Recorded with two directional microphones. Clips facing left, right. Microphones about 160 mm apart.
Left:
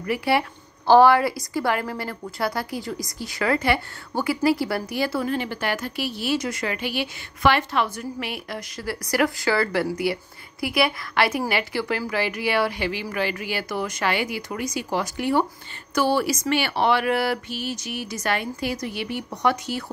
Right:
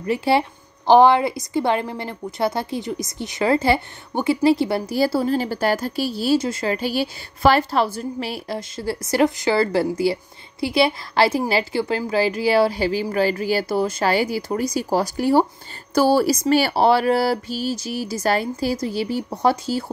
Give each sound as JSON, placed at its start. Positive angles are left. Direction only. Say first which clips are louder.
{"t": 0.0, "sound": "a woman's voice", "louder": "right 3 dB", "side_deg": -25}